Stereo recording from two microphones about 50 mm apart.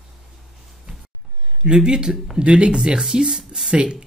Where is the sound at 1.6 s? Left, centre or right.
Centre.